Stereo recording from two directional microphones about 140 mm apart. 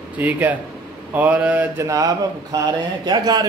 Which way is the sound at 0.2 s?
10° right (ahead or behind).